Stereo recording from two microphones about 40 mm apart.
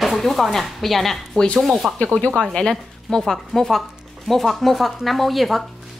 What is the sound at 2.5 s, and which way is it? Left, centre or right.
Speech, centre.